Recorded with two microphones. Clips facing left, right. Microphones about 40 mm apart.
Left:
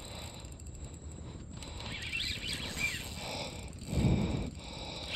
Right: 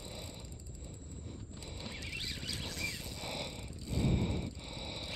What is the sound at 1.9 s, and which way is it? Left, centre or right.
Horse, left.